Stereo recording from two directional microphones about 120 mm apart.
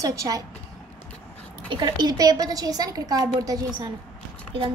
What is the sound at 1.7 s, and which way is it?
A woman's voice, 40° right (ahead or behind).